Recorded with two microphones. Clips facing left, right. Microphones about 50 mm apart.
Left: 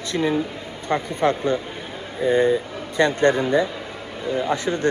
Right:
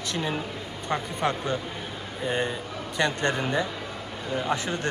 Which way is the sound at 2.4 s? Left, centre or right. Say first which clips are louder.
Left 11 dB; left.